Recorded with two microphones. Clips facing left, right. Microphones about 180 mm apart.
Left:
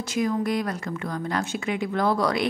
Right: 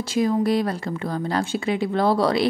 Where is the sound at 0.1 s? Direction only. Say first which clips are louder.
Right 4 dB; 30° right (ahead or behind).